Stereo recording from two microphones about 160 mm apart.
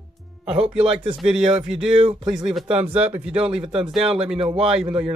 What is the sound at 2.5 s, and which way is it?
Speech, 5° right (ahead or behind).